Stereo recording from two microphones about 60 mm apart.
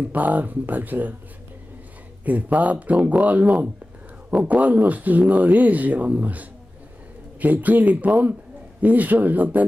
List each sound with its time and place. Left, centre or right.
0.0 s speech: right
2.2 s speech: right